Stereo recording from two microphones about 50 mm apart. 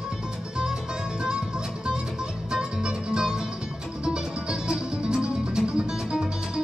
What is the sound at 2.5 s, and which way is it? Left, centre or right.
Music, centre.